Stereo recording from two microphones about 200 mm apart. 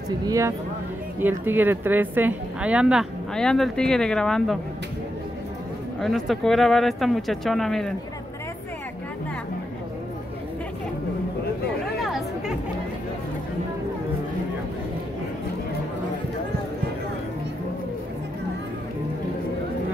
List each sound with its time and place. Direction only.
0.3 s speech: 15° right (ahead or behind); by 4.6 s 5° left (ahead or behind)
5.9 s speech: centre (ahead or behind)
12.0 s chatter: centre (ahead or behind)